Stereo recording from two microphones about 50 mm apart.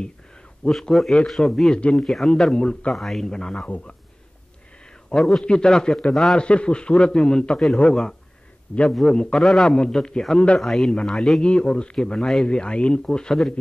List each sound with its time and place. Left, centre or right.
0.7 s speech: centre
1.8 s a man's voice: left
2.0 s speech: centre
2.9 s speech: centre; by 3.9 s left
5.1 s a man's voice: centre
5.4 s a man's voice: centre
9.0 s speech: centre
9.4 s a man's voice: centre
9.7 s a man's voice: centre
10.6 s a man's voice: centre
11.4 s a man's voice: centre